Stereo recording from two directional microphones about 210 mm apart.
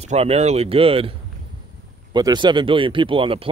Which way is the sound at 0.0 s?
30° right (ahead or behind).